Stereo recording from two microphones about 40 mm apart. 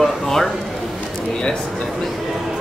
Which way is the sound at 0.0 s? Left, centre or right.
Centre.